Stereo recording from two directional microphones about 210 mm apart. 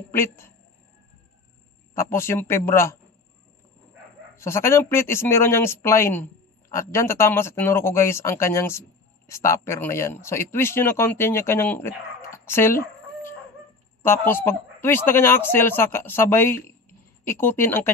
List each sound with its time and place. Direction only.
0.1 s speech: 10° left (ahead or behind)
2.0 s speech: 10° left (ahead or behind)
4.4 s speech: 15° left (ahead or behind)
14.0 s speech: 10° left (ahead or behind)